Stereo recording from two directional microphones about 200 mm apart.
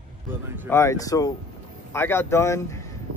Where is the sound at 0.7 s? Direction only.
15° left (ahead or behind).